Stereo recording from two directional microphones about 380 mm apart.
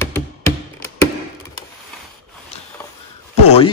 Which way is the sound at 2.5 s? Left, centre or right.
Centre.